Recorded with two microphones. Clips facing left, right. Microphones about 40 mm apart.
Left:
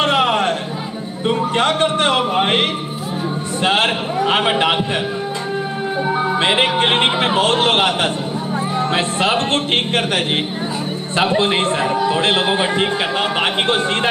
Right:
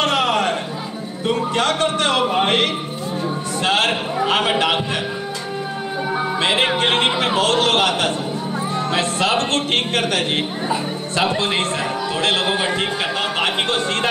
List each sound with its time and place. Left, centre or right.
0.0 s music: left
1.2 s a man's voice: left
6.0 s music: centre
6.8 s a man's voice: left